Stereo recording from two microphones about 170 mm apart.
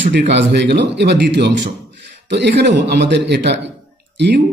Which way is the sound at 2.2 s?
90° right.